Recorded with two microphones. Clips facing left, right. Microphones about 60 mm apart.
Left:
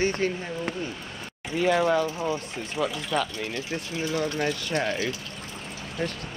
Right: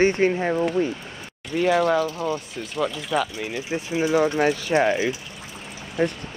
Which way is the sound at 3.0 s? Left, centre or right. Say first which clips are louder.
Right 3 dB; centre.